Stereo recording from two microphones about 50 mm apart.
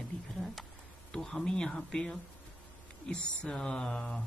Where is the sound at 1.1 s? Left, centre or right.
Centre.